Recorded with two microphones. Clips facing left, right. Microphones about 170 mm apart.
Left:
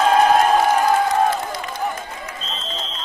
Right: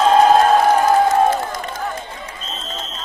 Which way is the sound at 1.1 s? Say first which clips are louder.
Right 3 dB; 45° right (ahead or behind).